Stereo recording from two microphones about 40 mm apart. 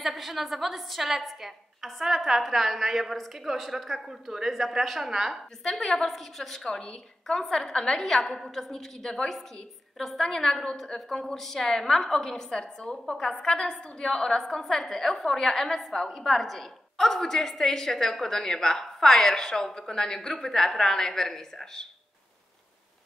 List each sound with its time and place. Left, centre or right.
0.0 s a woman's voice: centre
5.6 s a woman's voice: centre
8.0 s a woman's voice: centre
11.0 s a woman's voice: centre
14.4 s a woman's voice: centre